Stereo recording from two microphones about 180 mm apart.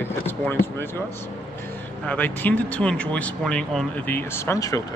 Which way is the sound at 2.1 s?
10° left (ahead or behind).